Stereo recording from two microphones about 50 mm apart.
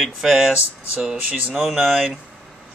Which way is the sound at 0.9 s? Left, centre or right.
Centre.